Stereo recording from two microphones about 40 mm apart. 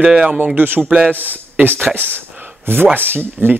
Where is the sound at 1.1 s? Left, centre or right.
Right.